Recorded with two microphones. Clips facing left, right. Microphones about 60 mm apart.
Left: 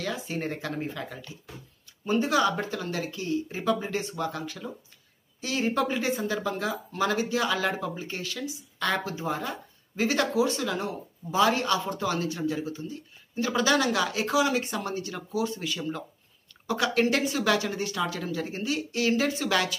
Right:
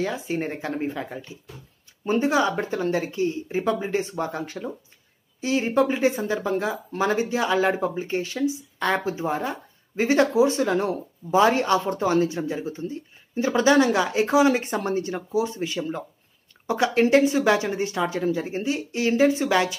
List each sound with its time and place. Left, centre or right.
0.0 s speech: right
5.4 s speech: centre
10.6 s speech: right; by 19.7 s centre